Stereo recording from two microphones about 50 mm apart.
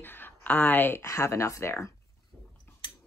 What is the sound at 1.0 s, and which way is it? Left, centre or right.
Speech, left.